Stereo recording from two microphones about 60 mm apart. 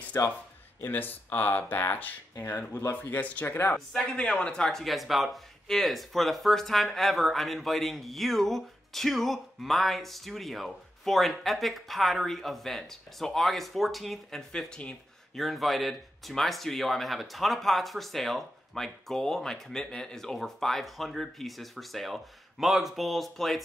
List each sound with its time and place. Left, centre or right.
0.2 s a man's voice: left
0.7 s speech: left
3.4 s speech: left
3.7 s speech: centre
15.3 s speech: centre